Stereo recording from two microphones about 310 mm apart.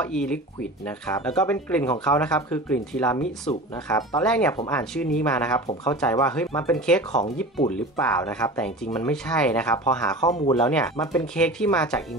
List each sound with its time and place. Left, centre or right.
0.0 s speech: centre
10.3 s speech: centre